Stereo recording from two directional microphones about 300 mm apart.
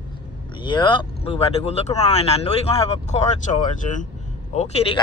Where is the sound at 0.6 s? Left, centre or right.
Centre.